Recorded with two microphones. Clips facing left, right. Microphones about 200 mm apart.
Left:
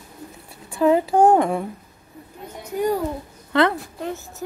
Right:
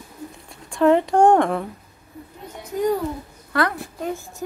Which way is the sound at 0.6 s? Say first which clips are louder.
Right 1 dB; 5° left (ahead or behind).